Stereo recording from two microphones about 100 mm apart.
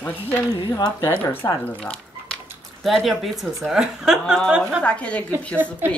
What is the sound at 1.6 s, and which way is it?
Speech, 10° left (ahead or behind).